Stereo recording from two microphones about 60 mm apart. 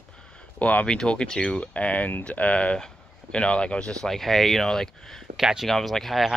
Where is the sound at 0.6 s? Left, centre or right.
Left.